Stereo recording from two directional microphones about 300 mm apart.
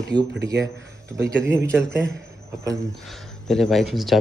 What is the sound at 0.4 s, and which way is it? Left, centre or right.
Speech, right.